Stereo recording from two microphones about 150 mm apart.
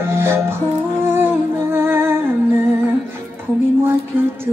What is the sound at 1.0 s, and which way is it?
Humming, 15° right (ahead or behind).